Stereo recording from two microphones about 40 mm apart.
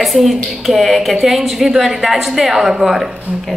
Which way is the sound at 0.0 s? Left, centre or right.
Centre.